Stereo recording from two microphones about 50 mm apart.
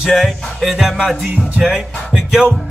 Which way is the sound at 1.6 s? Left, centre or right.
Centre.